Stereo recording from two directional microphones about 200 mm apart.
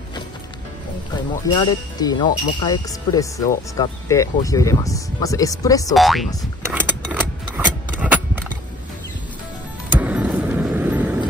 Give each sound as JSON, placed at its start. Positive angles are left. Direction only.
{"t": 1.1, "sound": "speech", "side_deg": 20}
{"t": 5.9, "sound": "speech", "side_deg": 0}
{"t": 6.6, "sound": "a sound", "side_deg": -10}
{"t": 9.9, "sound": "vehicle", "side_deg": -5}